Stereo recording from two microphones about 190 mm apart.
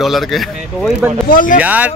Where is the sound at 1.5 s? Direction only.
10° right (ahead or behind).